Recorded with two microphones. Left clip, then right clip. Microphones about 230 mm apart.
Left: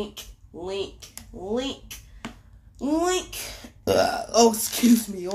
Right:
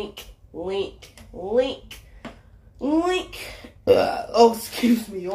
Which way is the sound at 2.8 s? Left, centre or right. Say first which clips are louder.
Right 2 dB; left.